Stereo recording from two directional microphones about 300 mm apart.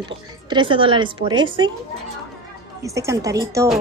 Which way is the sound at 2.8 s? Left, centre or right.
Centre.